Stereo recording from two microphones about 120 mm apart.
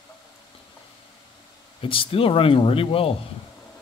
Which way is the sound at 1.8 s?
50° left (ahead or behind).